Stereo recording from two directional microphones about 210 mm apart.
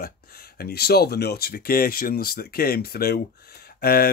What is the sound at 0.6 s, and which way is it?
Speech, 50° left (ahead or behind).